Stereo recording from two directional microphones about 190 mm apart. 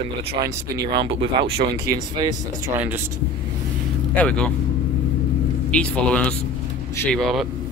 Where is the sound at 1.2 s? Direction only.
30° right (ahead or behind).